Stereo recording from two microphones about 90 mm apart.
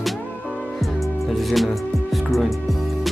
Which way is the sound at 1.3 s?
Centre (ahead or behind).